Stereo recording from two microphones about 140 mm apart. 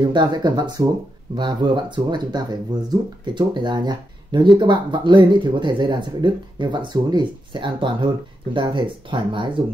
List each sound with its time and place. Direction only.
0.0 s speech: 30° right (ahead or behind)